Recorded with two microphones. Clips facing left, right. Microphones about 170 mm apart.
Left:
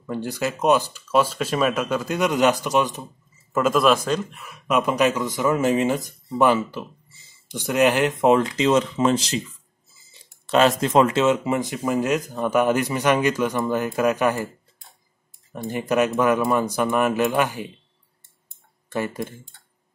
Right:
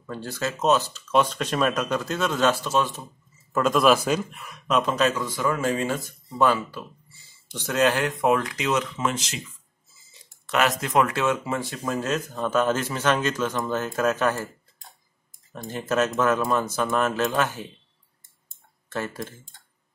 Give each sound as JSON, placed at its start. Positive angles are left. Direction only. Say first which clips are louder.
{"t": 0.0, "sound": "speech", "louder": "left 4 dB", "side_deg": 15}
{"t": 3.5, "sound": "speech", "louder": "left 1 dB", "side_deg": 5}
{"t": 10.4, "sound": "speech", "louder": "left 6 dB", "side_deg": 30}
{"t": 15.7, "sound": "speech", "louder": "left 3 dB", "side_deg": 15}
{"t": 18.9, "sound": "speech", "louder": "left 4 dB", "side_deg": 15}